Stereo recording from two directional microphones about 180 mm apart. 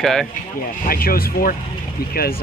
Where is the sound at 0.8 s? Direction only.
55° left (ahead or behind).